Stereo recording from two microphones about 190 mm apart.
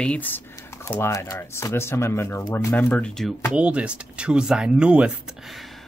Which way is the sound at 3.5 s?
5° right (ahead or behind).